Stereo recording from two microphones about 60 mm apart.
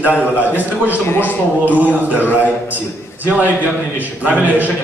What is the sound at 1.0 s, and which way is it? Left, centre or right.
Speech, left.